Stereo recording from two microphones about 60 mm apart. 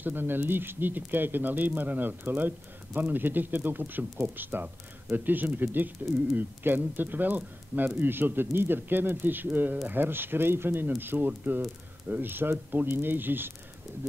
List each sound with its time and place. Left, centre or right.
0.0 s speech: right